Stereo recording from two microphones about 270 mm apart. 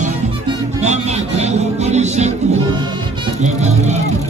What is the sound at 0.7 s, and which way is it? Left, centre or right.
Music, right.